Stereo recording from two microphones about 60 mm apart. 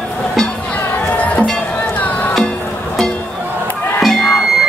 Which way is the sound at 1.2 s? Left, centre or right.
Left.